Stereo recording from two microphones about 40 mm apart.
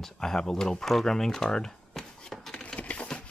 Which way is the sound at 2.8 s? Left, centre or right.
Left.